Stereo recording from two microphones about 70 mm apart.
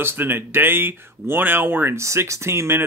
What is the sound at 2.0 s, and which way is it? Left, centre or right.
Speech, right.